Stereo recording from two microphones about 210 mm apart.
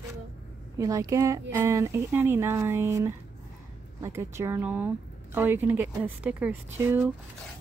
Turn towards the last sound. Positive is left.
turn(degrees=-10)  # may be behind; listen again after turning